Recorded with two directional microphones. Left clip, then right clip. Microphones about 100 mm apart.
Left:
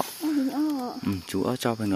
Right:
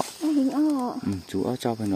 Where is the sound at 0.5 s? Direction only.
90° right.